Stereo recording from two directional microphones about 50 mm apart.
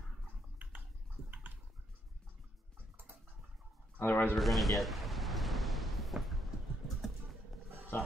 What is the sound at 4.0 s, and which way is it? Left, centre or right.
Speech, left.